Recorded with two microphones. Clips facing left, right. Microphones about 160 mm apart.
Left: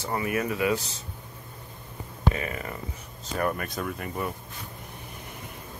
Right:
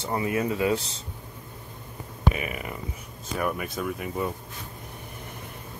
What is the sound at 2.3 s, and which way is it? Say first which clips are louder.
Speech: even; 15° right (ahead or behind).